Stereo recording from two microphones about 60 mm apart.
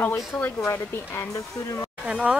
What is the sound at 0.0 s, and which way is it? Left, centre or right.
Speech, left.